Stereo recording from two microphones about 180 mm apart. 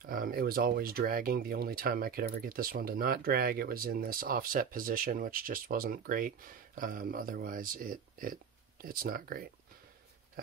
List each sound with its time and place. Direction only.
0.0 s speech: 50° right (ahead or behind)